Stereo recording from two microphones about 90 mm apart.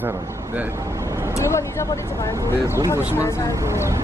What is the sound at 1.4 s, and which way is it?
Speech, 30° left (ahead or behind).